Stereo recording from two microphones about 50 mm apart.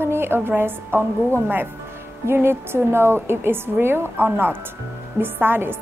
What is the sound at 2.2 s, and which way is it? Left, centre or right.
A woman's voice, right.